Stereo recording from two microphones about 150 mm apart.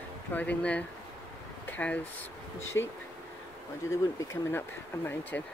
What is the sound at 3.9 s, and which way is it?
Speech, 20° left (ahead or behind).